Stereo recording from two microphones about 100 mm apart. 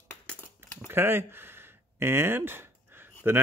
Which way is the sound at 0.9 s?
20° right (ahead or behind).